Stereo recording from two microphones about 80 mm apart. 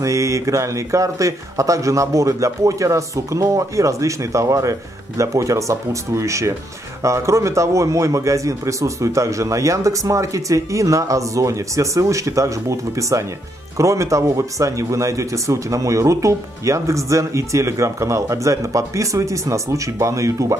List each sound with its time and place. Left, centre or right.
0.0 s speech: right